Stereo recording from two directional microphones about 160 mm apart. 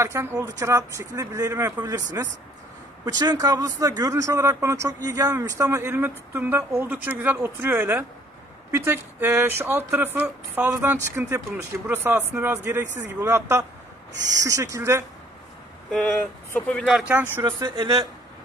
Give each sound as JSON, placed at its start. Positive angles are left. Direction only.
{"t": 0.0, "sound": "speech", "side_deg": -15}
{"t": 15.9, "sound": "speech", "side_deg": 5}
{"t": 17.1, "sound": "speech", "side_deg": -15}
{"t": 17.5, "sound": "speech", "side_deg": -30}